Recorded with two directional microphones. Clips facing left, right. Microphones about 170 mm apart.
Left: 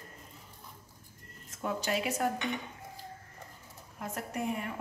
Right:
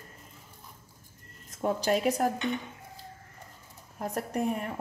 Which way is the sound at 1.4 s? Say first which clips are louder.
Right 6 dB; 35° right (ahead or behind).